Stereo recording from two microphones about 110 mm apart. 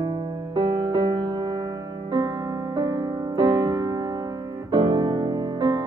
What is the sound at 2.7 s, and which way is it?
Music, 40° right (ahead or behind).